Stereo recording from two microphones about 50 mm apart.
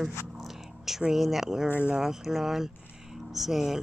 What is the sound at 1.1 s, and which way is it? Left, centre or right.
Speech, centre.